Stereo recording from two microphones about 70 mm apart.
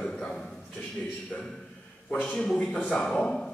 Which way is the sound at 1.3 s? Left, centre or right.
Centre.